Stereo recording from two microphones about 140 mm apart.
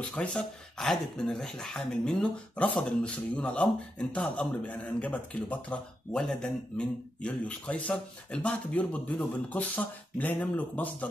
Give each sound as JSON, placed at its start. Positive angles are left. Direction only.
{"t": 0.0, "sound": "speech", "side_deg": 10}